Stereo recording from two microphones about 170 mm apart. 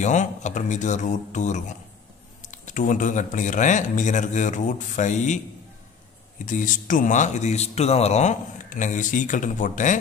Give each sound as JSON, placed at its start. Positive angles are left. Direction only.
{"t": 0.0, "sound": "speech", "side_deg": 45}
{"t": 6.4, "sound": "speech", "side_deg": 50}